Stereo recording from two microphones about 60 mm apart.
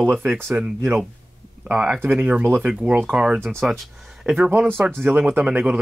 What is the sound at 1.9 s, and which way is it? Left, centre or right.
Speech, right.